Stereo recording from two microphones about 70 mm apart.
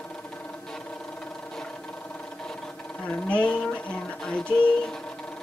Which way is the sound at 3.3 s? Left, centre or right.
Centre.